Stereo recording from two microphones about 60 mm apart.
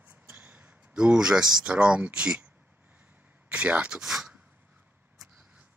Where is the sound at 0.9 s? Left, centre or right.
Centre.